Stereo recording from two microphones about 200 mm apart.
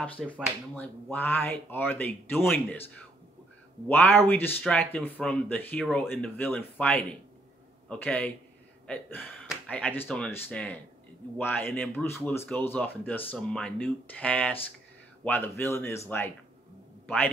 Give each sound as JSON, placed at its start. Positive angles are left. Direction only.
{"t": 0.0, "sound": "speech", "side_deg": 5}
{"t": 3.8, "sound": "speech", "side_deg": 10}
{"t": 17.0, "sound": "speech", "side_deg": 5}